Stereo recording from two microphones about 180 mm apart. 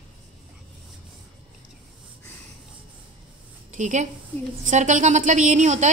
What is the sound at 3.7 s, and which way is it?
A woman's voice, 45° right (ahead or behind).